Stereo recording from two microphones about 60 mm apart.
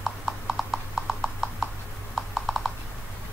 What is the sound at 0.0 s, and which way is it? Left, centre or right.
Clip-clop, centre.